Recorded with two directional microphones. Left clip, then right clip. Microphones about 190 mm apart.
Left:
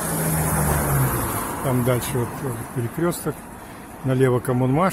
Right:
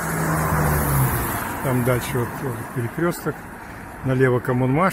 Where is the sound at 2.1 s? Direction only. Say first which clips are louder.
Right 1 dB; 10° right (ahead or behind).